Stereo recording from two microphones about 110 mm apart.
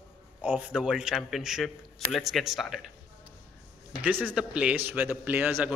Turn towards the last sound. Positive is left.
turn(degrees=-20)  # may be behind; listen again after turning